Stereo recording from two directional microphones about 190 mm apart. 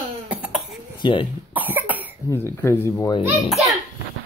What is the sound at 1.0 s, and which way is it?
Speech, 25° left (ahead or behind).